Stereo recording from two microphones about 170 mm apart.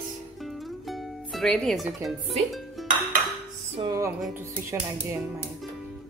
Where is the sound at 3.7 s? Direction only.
25° right (ahead or behind).